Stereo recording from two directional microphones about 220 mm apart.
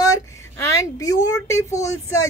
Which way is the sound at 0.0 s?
15° left (ahead or behind).